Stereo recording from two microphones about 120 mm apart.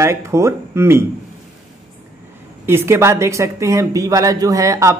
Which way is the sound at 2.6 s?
20° right (ahead or behind).